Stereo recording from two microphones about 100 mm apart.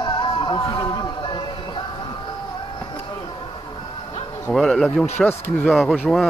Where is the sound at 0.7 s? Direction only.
45° left (ahead or behind).